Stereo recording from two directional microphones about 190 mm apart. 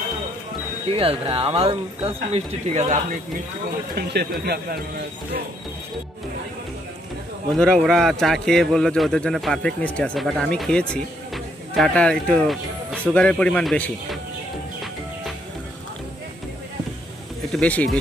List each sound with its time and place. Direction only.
0.9 s speech: 30° right (ahead or behind)
3.9 s speech: 55° right (ahead or behind)
7.5 s speech: 5° left (ahead or behind)
17.5 s speech: 5° left (ahead or behind)